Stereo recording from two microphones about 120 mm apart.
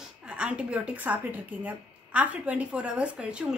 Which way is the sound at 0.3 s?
10° right (ahead or behind).